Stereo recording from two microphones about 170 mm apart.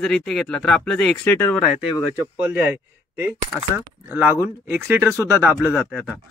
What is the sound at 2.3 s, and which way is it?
Speech, 10° right (ahead or behind).